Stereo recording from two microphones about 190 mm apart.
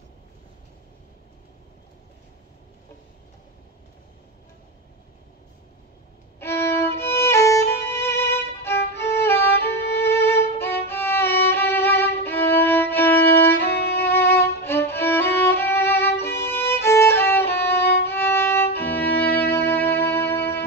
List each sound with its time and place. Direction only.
6.4 s violin: 15° left (ahead or behind)
13.7 s violin: 60° left (ahead or behind)
13.9 s violin: 10° left (ahead or behind)
16.3 s violin: 60° left (ahead or behind)
16.5 s violin: 15° left (ahead or behind)
19.3 s music: 10° left (ahead or behind)